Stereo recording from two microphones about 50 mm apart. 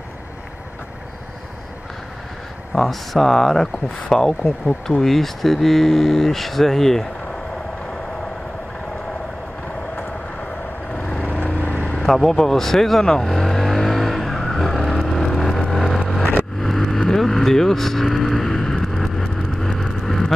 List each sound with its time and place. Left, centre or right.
2.7 s cattle: centre
4.1 s speech: centre
4.8 s cattle: centre
10.9 s vehicle: left
11.4 s vehicle: left
12.0 s speech: centre
13.3 s vehicle: centre
19.5 s vehicle: centre
19.8 s vehicle: centre